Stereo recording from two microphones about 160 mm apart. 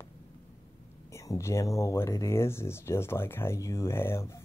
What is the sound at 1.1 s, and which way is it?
Speech, 20° left (ahead or behind).